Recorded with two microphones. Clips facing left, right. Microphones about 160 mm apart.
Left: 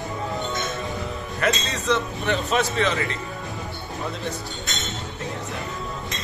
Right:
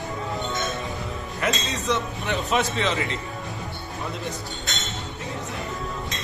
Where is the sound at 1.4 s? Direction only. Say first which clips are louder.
Left 2 dB; 20° right (ahead or behind).